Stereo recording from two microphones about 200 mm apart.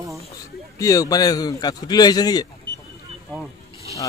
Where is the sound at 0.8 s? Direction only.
15° left (ahead or behind).